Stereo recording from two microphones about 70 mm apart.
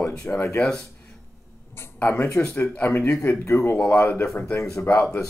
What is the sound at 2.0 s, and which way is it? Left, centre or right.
Speech, left.